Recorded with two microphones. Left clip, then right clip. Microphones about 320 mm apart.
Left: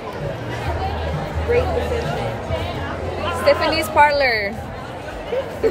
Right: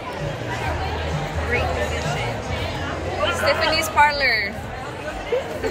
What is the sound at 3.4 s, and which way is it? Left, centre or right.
A woman's voice, centre.